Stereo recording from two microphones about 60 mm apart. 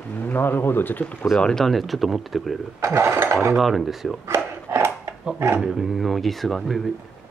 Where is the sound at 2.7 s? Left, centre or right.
Right.